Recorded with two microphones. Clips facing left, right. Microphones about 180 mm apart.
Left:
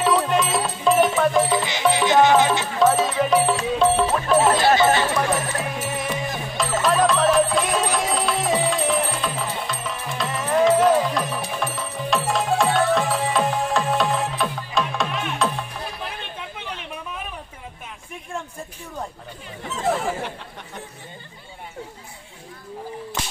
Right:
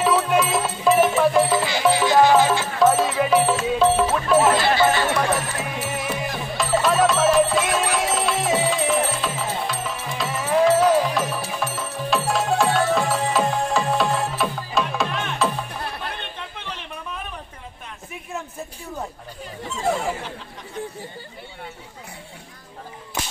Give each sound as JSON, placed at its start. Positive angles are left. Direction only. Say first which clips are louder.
{"t": 0.0, "sound": "music", "louder": "right 1 dB", "side_deg": -5}
{"t": 1.5, "sound": "music", "louder": "right 1 dB", "side_deg": 20}
{"t": 2.8, "sound": "music", "louder": "even", "side_deg": 0}
{"t": 19.7, "sound": "a sound", "louder": "even", "side_deg": 0}